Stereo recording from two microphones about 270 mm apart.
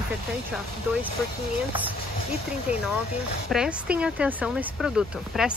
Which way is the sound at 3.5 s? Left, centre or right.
Centre.